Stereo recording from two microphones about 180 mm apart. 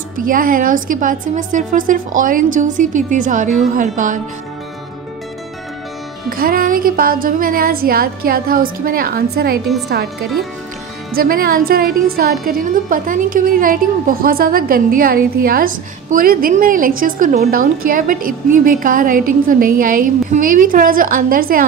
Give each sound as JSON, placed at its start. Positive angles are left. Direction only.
{"t": 0.2, "sound": "a woman's voice", "side_deg": -50}
{"t": 6.3, "sound": "a woman's voice", "side_deg": -55}
{"t": 11.1, "sound": "a woman's voice", "side_deg": -55}